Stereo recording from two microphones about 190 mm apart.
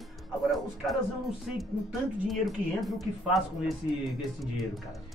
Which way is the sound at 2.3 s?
Centre (ahead or behind).